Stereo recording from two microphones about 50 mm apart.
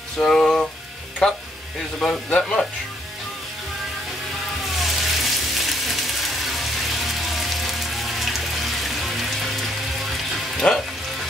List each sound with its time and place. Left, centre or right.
0.2 s a sound: centre
2.0 s speech: centre
4.8 s frying: centre
7.2 s rain on surface: centre
8.8 s music: centre
10.6 s frying: left